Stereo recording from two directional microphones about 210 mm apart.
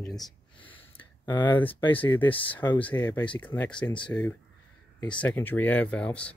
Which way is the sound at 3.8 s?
20° left (ahead or behind).